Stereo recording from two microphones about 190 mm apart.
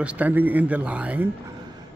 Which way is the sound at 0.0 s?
10° right (ahead or behind).